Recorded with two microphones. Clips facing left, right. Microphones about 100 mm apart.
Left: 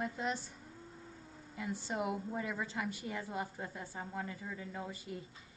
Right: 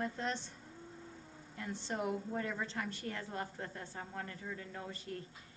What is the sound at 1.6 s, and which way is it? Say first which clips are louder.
A woman's voice: left 1 dB; 10° left (ahead or behind).